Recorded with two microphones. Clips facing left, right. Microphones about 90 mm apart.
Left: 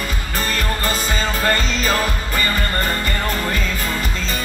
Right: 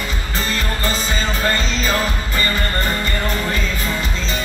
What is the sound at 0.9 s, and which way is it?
Music, 45° left (ahead or behind).